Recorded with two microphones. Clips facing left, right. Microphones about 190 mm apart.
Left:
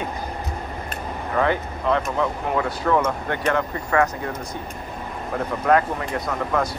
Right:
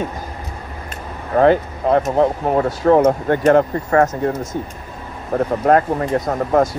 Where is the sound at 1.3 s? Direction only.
40° right (ahead or behind).